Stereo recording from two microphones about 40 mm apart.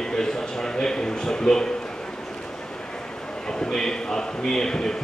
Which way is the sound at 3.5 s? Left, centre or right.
Centre.